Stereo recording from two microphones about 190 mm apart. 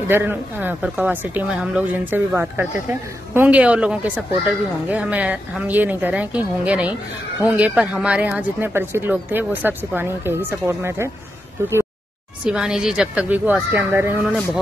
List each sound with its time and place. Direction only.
0.1 s speech: 10° right (ahead or behind)
12.4 s speech: 5° right (ahead or behind)